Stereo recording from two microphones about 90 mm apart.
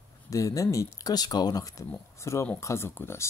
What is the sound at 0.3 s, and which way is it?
Speech, 40° left (ahead or behind).